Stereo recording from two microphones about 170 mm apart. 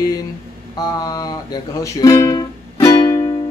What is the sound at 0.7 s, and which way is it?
Speech, 25° left (ahead or behind).